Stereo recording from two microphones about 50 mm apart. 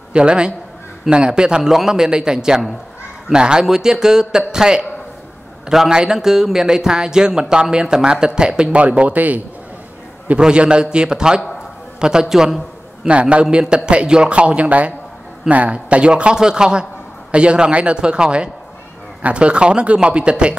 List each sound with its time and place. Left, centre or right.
0.1 s a man's voice: centre
8.8 s speech: right
10.4 s speech: centre
13.0 s a man's voice: right